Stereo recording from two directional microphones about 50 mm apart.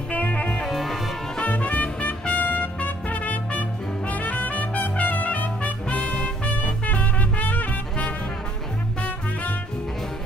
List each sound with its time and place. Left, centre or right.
0.1 s music: left
0.7 s music: centre
1.4 s music: left
5.9 s music: left